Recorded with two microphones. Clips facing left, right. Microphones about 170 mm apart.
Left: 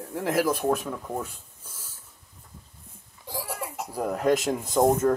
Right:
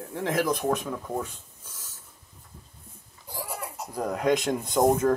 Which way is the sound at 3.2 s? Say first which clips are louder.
Left 2 dB; 90° left.